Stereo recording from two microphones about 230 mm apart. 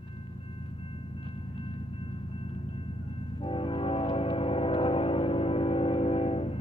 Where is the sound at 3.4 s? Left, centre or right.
Left.